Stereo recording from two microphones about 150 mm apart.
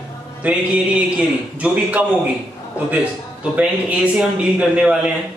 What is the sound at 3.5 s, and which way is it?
A man's voice, 10° right (ahead or behind).